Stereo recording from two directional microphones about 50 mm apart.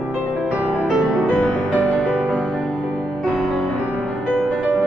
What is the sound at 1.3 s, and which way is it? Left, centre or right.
Music, left.